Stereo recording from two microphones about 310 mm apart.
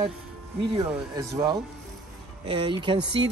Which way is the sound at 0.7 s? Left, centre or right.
Centre.